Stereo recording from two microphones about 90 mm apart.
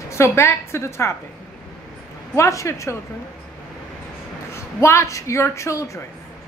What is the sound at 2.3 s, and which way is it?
Speech, 35° left (ahead or behind).